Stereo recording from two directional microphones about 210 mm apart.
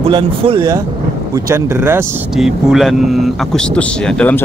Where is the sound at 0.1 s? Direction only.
25° right (ahead or behind).